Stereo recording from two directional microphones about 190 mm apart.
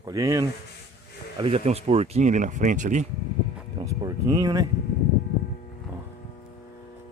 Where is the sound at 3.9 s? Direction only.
20° right (ahead or behind).